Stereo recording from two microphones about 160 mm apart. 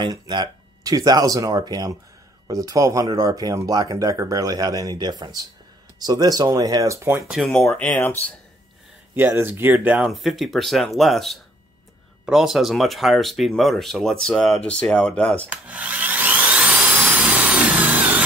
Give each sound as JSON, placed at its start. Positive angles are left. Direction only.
{"t": 0.0, "sound": "speech", "side_deg": -25}
{"t": 7.2, "sound": "speech", "side_deg": 0}
{"t": 9.1, "sound": "speech", "side_deg": -15}
{"t": 15.5, "sound": "vacuum cleaner", "side_deg": -10}